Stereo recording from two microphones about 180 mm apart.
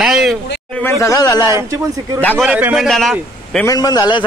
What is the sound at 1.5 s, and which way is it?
Speech, 15° right (ahead or behind).